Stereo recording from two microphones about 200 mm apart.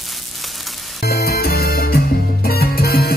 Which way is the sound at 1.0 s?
50° left (ahead or behind).